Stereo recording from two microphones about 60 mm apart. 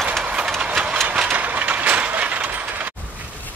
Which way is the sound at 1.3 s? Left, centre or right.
Right.